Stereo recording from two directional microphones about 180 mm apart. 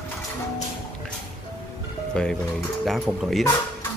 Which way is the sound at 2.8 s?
Centre (ahead or behind).